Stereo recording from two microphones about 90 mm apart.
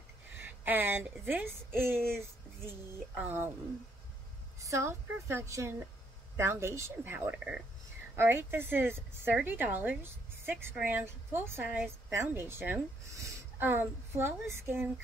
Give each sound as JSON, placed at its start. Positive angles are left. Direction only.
{"t": 0.4, "sound": "a woman's voice", "side_deg": -20}
{"t": 2.0, "sound": "a sound", "side_deg": -25}
{"t": 3.2, "sound": "a woman's voice", "side_deg": -20}
{"t": 4.6, "sound": "a woman's voice", "side_deg": -30}
{"t": 7.2, "sound": "a woman's voice", "side_deg": -20}